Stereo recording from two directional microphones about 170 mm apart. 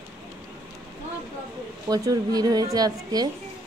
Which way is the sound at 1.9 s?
20° right (ahead or behind).